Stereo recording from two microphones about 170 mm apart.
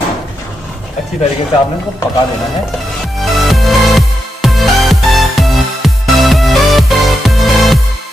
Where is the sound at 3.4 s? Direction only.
Centre (ahead or behind).